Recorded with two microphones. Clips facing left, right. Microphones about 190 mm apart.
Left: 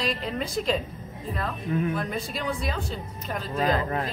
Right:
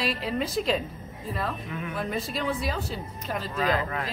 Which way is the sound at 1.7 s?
35° left (ahead or behind).